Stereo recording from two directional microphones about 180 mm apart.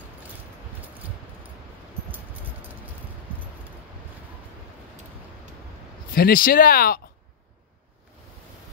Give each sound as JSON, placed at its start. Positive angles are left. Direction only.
{"t": 6.1, "sound": "speech", "side_deg": 55}